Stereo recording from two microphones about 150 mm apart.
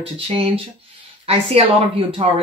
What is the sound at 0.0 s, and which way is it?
Speech, 40° right (ahead or behind).